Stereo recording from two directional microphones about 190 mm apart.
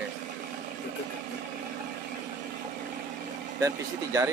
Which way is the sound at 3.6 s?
15° right (ahead or behind).